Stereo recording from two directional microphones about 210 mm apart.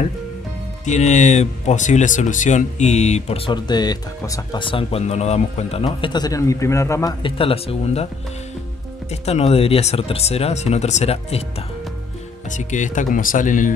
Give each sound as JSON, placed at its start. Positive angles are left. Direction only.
{"t": 0.8, "sound": "speech", "side_deg": 35}
{"t": 9.1, "sound": "speech", "side_deg": 30}
{"t": 12.4, "sound": "speech", "side_deg": 35}